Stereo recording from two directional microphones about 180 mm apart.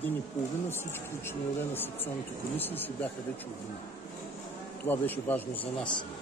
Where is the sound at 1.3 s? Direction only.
10° left (ahead or behind).